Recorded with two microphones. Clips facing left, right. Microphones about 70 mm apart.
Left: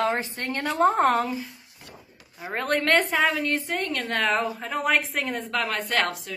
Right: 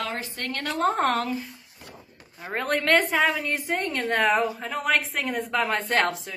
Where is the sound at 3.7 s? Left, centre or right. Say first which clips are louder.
Right 2 dB; right.